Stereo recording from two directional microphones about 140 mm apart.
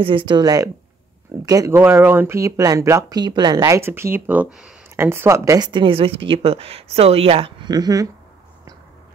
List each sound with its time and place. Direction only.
0.0 s speech: 35° right (ahead or behind); by 4.7 s 5° right (ahead or behind)
4.9 s speech: 15° right (ahead or behind); by 7.7 s 40° right (ahead or behind)
7.7 s speech: 25° right (ahead or behind)